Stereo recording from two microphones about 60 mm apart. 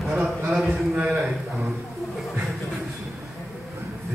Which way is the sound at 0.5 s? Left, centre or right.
Centre.